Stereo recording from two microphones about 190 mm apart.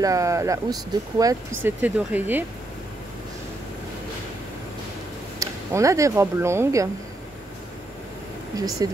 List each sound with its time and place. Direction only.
0.0 s speech: 15° right (ahead or behind)
1.6 s speech: 10° right (ahead or behind)
5.4 s speech: 15° right (ahead or behind)
8.5 s speech: 20° right (ahead or behind)